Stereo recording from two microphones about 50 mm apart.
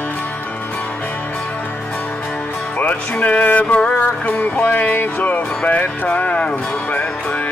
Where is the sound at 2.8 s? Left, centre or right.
Left.